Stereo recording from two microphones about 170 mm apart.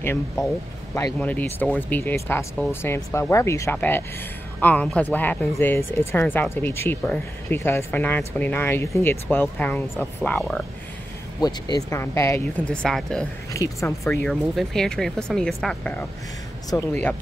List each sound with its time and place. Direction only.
1.2 s speech: 10° left (ahead or behind)
11.4 s speech: 25° left (ahead or behind); by 13.3 s 5° left (ahead or behind)
13.5 s speech: 20° left (ahead or behind)
14.3 s speech: centre (ahead or behind)